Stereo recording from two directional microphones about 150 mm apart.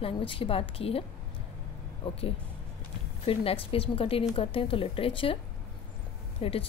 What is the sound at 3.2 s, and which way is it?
Speech, 40° left (ahead or behind).